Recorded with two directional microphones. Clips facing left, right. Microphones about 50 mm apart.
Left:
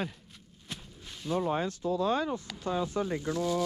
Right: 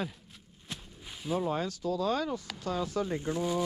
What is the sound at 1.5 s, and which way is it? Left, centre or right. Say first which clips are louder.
Speech: left 2 dB; left.